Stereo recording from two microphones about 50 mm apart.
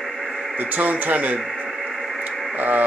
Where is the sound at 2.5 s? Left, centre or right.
Right.